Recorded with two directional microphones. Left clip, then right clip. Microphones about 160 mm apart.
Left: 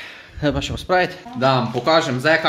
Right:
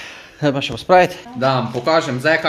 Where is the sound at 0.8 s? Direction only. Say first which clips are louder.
Right 6 dB; 30° right (ahead or behind).